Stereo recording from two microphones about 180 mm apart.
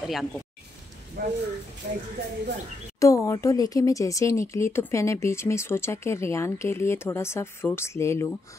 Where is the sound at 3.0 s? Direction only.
20° left (ahead or behind).